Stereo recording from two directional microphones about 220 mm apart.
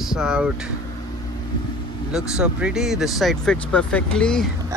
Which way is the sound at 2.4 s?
5° right (ahead or behind).